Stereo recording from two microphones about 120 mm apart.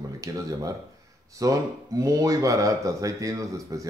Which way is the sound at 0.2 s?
25° right (ahead or behind).